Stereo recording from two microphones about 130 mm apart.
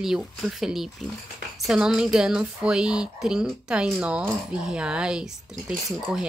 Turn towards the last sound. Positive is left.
turn(degrees=0)  # may be behind; listen again after turning